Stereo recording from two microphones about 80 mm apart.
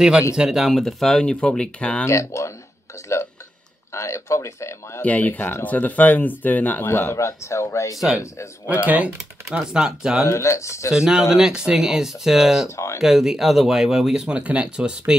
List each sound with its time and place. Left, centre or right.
0.4 s speech: centre
2.0 s speech: left
3.9 s speech: left
5.0 s speech: centre; by 8.0 s left
8.8 s speech: centre
10.2 s speech: left
10.9 s speech: centre
12.6 s speech: left
13.0 s speech: centre